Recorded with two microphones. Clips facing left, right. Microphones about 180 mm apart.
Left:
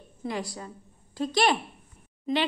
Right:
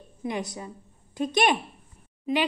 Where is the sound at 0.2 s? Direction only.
20° right (ahead or behind).